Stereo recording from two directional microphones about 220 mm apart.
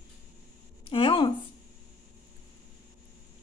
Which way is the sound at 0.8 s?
25° left (ahead or behind).